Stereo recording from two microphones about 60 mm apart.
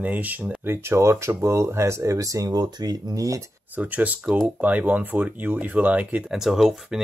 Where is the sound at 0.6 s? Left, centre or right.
Right.